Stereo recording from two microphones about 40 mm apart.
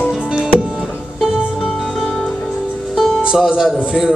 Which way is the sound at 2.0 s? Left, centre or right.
Centre.